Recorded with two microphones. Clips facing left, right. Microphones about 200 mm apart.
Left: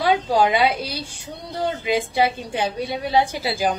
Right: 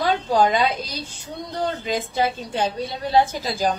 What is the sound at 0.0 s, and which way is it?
A woman's voice, 10° left (ahead or behind).